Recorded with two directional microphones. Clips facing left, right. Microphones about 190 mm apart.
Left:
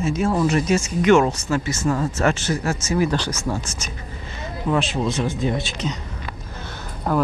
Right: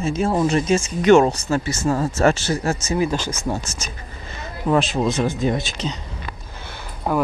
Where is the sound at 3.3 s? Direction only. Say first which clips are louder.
Right 1 dB; 25° right (ahead or behind).